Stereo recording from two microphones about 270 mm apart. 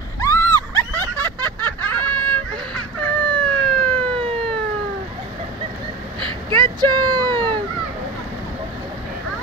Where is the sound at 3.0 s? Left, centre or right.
Centre.